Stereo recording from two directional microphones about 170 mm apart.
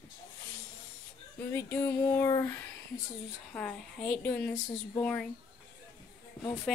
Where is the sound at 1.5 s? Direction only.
15° left (ahead or behind).